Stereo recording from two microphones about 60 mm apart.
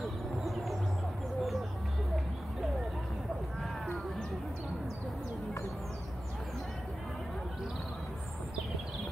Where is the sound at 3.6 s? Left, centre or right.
Centre.